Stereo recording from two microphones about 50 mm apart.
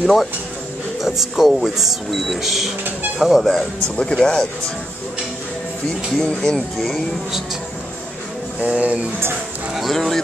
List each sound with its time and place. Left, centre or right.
0.0 s speech: centre
3.5 s speech: centre
6.2 s speech: centre
6.8 s speech: centre
8.5 s speech: right
9.8 s speech: centre